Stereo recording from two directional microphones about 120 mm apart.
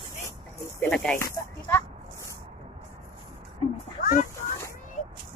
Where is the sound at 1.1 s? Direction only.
20° left (ahead or behind).